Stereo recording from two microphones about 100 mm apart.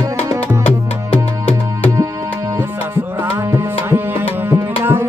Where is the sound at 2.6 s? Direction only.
25° right (ahead or behind).